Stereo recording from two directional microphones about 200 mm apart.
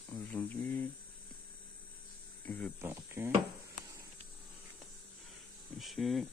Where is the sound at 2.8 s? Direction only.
10° right (ahead or behind).